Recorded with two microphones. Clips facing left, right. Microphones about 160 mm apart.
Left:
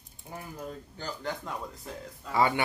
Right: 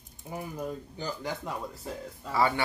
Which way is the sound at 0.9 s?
5° right (ahead or behind).